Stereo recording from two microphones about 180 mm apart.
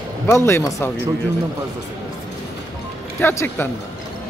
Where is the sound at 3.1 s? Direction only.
10° left (ahead or behind).